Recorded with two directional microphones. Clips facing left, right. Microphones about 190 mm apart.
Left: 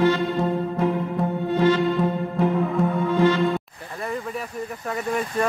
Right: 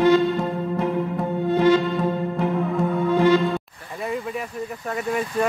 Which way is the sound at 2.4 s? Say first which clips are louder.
Left 4 dB; centre (ahead or behind).